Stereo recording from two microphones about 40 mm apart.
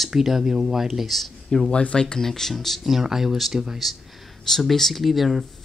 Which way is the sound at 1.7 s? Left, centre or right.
Left.